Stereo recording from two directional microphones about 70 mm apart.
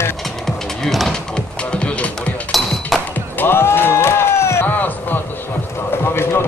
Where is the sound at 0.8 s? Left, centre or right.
Centre.